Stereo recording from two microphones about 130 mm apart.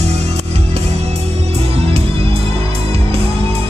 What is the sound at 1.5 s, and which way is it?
Music, 50° right (ahead or behind).